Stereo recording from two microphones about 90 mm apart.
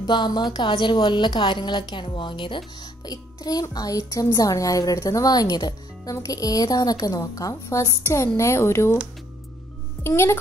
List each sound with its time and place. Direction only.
0.0 s a woman's voice: 55° left (ahead or behind); by 8.9 s 30° left (ahead or behind)
10.0 s a child's voice: 30° left (ahead or behind)